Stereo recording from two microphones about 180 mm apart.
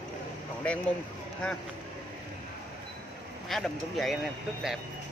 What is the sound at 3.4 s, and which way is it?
Speech, centre (ahead or behind).